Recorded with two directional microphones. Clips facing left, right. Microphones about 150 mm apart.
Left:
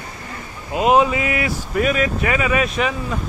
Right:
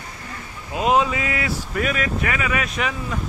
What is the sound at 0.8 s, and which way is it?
Speech, 25° left (ahead or behind).